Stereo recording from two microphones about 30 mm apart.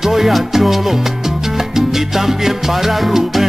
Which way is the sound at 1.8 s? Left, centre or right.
Centre.